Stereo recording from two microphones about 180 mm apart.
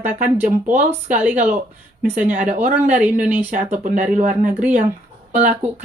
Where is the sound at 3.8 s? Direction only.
40° right (ahead or behind).